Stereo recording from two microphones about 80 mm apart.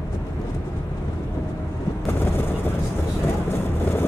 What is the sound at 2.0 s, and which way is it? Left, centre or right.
Vehicle, left.